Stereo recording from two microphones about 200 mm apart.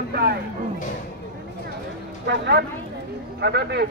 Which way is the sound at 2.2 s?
60° right (ahead or behind).